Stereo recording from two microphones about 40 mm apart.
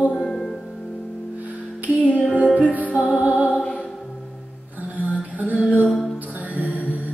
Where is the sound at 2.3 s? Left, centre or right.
Right.